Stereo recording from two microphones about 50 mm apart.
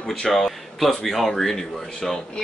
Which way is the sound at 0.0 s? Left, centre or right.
Centre.